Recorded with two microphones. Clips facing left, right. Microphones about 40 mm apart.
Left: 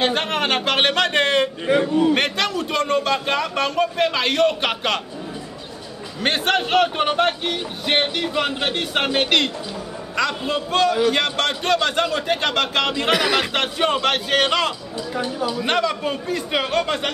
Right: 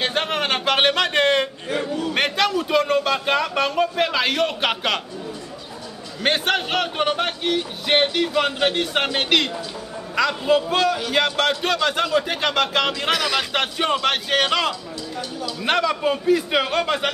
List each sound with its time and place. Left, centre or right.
0.0 s a sound: centre
2.1 s a man's voice: centre
6.2 s a man's voice: centre
15.1 s speech: left
15.5 s a man's voice: centre